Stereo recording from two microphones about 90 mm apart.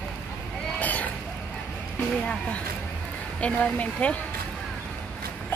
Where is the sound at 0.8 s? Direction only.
15° left (ahead or behind).